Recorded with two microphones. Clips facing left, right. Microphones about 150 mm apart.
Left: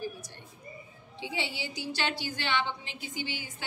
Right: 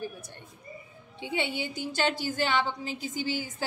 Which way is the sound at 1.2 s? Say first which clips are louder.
Right 5 dB; 55° right (ahead or behind).